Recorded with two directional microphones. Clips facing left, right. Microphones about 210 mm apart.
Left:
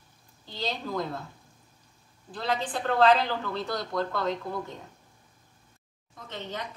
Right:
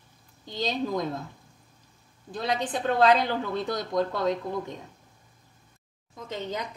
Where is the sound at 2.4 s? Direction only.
15° right (ahead or behind).